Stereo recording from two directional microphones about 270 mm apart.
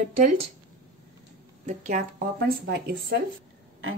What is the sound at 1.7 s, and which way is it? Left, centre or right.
Speech, right.